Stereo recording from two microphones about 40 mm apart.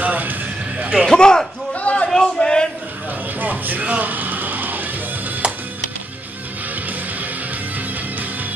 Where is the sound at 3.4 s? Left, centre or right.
Right.